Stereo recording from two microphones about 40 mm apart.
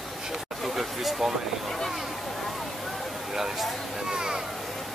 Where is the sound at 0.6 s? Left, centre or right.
Centre.